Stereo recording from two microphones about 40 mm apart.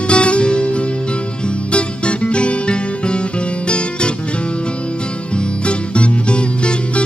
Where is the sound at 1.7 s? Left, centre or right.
Left.